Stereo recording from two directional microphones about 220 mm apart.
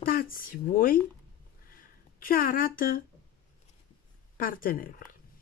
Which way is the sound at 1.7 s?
40° left (ahead or behind).